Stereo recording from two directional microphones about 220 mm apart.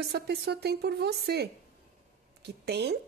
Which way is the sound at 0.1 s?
45° right (ahead or behind).